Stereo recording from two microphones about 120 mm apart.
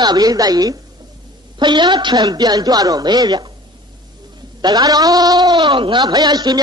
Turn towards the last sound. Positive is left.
turn(degrees=-35)  # may be behind; listen again after turning